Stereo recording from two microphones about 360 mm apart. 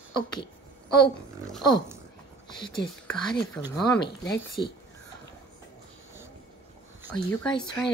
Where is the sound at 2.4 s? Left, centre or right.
Centre.